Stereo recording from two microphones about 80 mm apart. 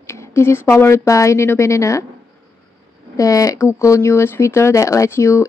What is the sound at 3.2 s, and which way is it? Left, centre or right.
Speech, left.